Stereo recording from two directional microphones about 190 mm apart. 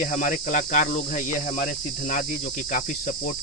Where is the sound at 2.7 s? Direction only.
40° left (ahead or behind).